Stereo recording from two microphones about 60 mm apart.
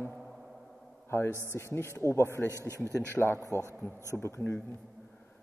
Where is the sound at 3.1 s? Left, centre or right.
Left.